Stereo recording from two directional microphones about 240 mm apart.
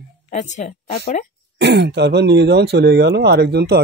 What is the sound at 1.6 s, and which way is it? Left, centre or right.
Speech, right.